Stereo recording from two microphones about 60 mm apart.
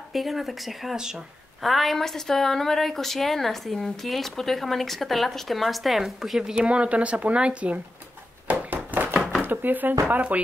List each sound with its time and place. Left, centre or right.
0.1 s a woman's voice: centre
8.5 s a sound: right
9.4 s speech: right